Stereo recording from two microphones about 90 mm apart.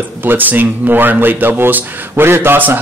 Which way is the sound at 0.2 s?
20° right (ahead or behind).